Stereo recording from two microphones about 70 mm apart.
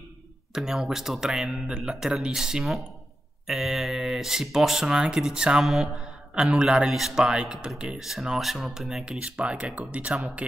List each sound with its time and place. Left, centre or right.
0.5 s a man's voice: centre